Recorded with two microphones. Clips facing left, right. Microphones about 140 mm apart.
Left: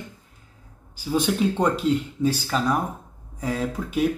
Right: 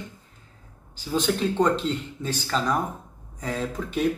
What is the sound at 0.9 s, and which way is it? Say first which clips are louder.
Speech: left 2 dB; 10° left (ahead or behind).